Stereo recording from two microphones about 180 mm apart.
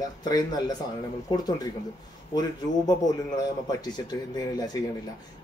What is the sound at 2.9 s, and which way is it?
Speech, 20° left (ahead or behind).